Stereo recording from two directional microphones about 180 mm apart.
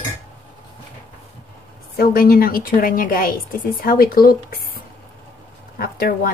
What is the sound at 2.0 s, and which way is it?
A woman's voice, 55° left (ahead or behind).